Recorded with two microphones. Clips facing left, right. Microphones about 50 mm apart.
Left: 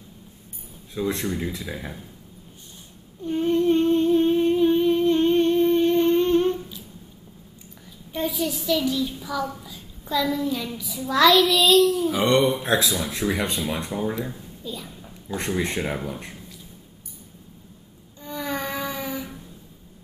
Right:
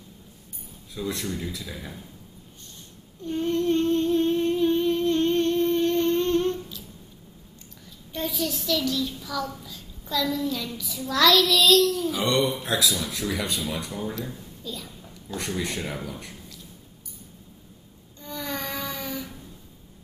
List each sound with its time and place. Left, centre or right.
0.9 s speech: left
3.3 s a sound: centre
8.1 s a child's voice: centre
12.1 s speech: left
15.3 s speech: left
18.2 s a sound: centre